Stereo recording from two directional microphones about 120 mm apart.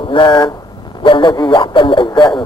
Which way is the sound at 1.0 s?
40° left (ahead or behind).